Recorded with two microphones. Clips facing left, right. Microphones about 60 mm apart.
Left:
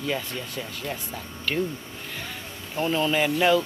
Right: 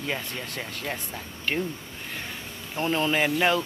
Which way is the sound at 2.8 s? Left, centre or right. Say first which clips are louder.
Left 1 dB; right.